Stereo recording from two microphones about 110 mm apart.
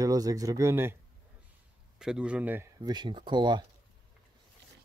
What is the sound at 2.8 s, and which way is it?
Speech, 45° right (ahead or behind).